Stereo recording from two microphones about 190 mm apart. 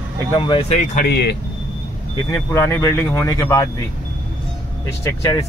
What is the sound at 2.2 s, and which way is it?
Speech, 15° left (ahead or behind).